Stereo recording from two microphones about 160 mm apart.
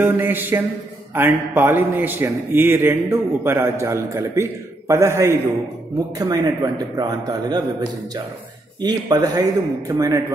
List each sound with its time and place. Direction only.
0.0 s a man's voice: 10° right (ahead or behind)
8.8 s a man's voice: 25° right (ahead or behind)